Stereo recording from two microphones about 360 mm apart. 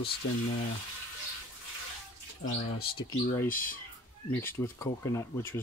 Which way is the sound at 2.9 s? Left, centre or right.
Centre.